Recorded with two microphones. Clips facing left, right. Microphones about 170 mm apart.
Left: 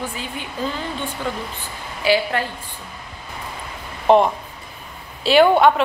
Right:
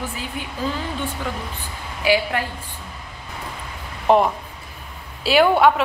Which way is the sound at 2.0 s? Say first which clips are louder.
Left 1 dB; 10° right (ahead or behind).